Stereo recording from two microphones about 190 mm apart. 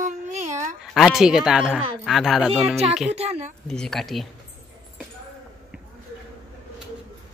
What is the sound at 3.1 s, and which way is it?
Speech, 35° right (ahead or behind).